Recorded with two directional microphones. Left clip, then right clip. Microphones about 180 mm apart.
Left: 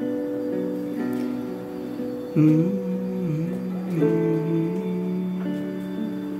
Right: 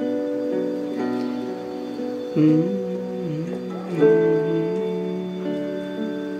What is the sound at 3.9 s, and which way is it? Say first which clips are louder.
Music: right 6 dB; 30° right (ahead or behind).